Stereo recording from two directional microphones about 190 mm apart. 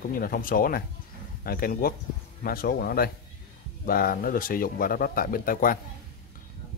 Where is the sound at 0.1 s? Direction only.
50° left (ahead or behind).